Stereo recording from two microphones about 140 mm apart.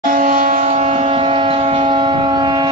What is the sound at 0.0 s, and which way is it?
Vehicle, 75° right (ahead or behind).